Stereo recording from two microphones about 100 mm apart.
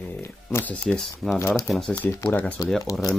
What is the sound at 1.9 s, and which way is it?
Speech, 25° left (ahead or behind).